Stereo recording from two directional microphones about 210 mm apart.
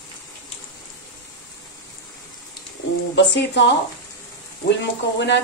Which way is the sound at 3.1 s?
55° left (ahead or behind).